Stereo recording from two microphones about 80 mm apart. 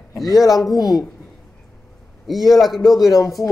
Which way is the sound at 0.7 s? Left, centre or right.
Left.